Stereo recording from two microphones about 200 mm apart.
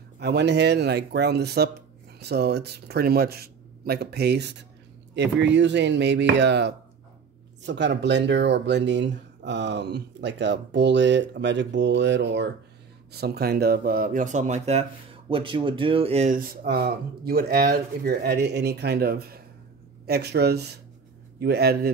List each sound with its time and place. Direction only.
0.2 s speech: 55° right (ahead or behind)